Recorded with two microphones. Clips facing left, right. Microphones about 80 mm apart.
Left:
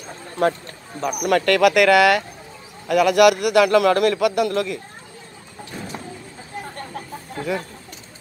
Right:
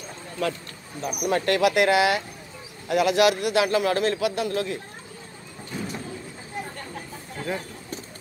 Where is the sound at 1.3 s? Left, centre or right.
Left.